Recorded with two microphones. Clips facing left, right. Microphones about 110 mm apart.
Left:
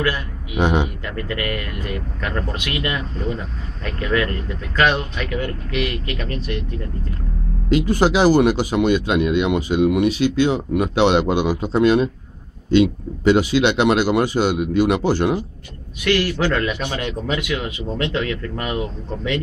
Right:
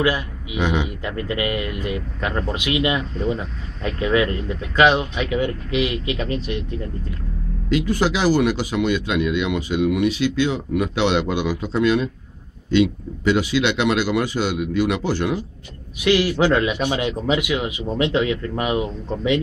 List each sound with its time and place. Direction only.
0.6 s speech: 40° left (ahead or behind)
1.0 s a man's voice: 15° right (ahead or behind)
7.7 s speech: 40° left (ahead or behind)
10.0 s speech: 50° left (ahead or behind)
16.0 s a man's voice: 15° right (ahead or behind)